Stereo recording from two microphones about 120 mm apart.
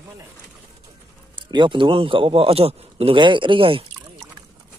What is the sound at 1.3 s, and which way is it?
A man's voice, 40° right (ahead or behind).